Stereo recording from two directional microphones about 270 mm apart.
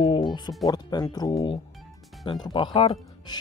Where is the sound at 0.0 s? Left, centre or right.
Centre.